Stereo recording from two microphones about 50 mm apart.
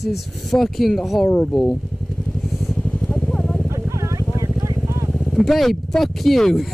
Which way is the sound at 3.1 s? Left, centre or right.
Left.